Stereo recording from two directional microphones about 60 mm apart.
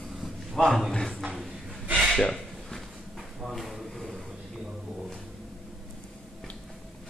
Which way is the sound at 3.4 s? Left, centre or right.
Centre.